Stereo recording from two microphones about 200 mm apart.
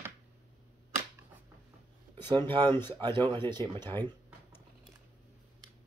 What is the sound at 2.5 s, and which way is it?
Speech, 20° right (ahead or behind).